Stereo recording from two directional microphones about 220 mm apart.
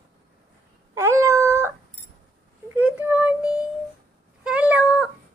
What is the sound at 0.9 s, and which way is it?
Cat, 10° right (ahead or behind).